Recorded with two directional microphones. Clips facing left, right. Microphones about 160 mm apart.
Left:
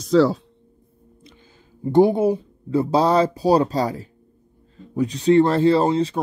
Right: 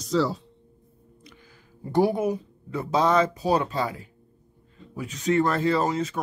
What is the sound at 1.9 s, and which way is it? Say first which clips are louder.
Speech: left 7 dB; 25° left (ahead or behind).